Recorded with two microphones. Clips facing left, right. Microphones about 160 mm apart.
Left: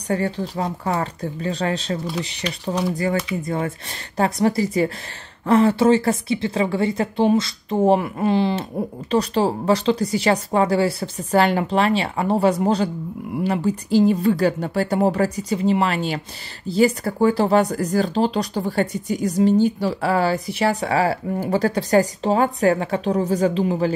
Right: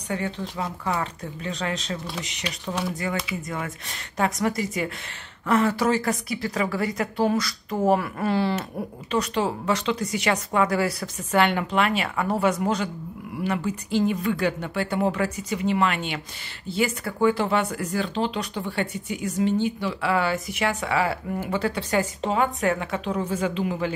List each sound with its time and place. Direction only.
0.1 s speech: 40° left (ahead or behind)